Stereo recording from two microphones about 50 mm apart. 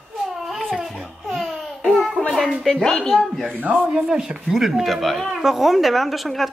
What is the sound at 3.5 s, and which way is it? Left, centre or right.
Speech, right.